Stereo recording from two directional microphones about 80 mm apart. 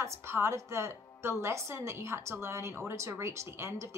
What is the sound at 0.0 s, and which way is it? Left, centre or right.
Speech, right.